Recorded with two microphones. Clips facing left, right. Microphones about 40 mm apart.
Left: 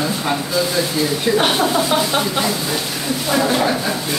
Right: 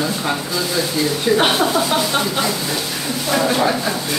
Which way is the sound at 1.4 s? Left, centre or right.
Centre.